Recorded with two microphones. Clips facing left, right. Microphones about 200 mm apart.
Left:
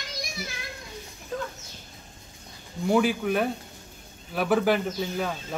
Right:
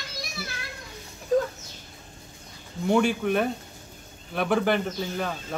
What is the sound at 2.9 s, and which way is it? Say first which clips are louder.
Speech: right 1 dB; centre (ahead or behind).